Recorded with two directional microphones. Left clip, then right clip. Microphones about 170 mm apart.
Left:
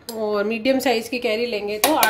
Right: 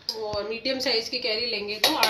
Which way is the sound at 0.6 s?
80° left.